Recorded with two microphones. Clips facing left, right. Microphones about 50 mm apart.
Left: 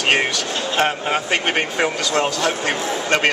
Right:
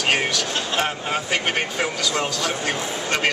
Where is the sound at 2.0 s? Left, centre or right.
Centre.